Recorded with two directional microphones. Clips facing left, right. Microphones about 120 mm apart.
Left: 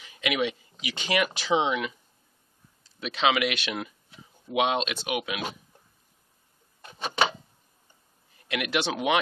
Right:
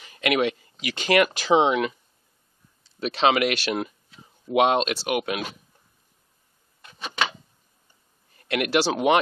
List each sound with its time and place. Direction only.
0.0 s speech: 55° right (ahead or behind)
3.0 s speech: 40° right (ahead or behind)
6.8 s a sound: 30° left (ahead or behind)
8.7 s speech: 40° right (ahead or behind)